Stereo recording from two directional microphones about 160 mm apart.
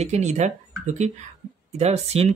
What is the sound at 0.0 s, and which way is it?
Speech, 45° right (ahead or behind).